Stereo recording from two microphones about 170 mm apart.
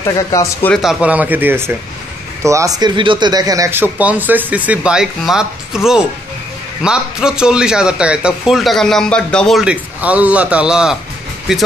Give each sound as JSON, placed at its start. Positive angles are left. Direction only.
{"t": 0.0, "sound": "speech", "side_deg": 20}
{"t": 0.8, "sound": "speech", "side_deg": -10}
{"t": 6.8, "sound": "a man's voice", "side_deg": -5}